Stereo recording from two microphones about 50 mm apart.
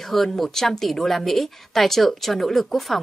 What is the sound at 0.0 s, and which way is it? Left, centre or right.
A woman's voice, centre.